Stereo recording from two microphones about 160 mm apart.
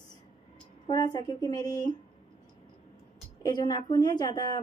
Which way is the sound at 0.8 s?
25° left (ahead or behind).